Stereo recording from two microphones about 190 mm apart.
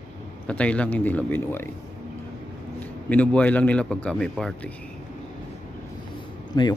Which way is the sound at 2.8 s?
10° left (ahead or behind).